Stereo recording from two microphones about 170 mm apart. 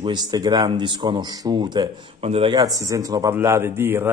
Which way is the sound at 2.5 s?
20° right (ahead or behind).